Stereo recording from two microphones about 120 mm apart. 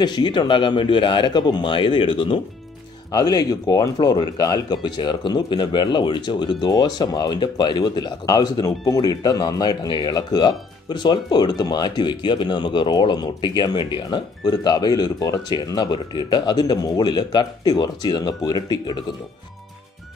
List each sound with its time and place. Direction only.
0.0 s speech: 35° left (ahead or behind)
3.1 s speech: 30° left (ahead or behind)